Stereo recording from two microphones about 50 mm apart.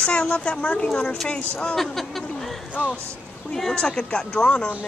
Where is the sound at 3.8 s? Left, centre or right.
Centre.